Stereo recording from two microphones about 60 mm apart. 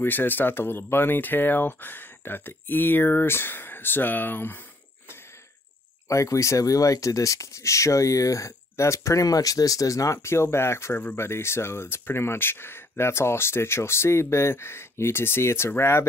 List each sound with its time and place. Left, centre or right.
0.0 s speech: left
6.0 s speech: left